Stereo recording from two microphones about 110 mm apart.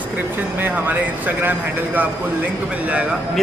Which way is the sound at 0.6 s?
15° right (ahead or behind).